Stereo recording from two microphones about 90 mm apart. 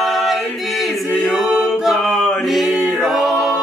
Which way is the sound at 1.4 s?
5° right (ahead or behind).